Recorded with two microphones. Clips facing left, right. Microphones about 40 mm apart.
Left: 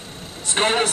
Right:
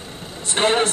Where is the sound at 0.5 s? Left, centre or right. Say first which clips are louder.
Right 1 dB; left.